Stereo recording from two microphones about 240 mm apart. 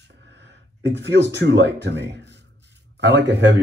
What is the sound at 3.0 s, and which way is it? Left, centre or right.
Speech, right.